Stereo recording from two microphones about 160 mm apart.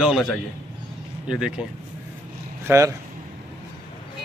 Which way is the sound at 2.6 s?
20° right (ahead or behind).